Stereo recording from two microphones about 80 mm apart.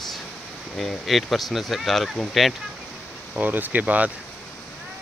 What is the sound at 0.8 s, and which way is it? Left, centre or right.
Speech, centre.